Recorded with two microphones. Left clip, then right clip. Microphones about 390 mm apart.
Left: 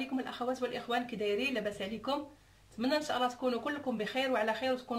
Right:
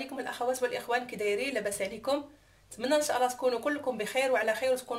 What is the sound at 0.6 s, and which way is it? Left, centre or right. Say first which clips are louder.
Speech: right 4 dB; centre.